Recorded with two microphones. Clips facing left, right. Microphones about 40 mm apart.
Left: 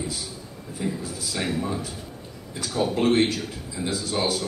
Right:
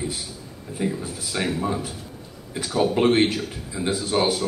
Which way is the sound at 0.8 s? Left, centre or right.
Right.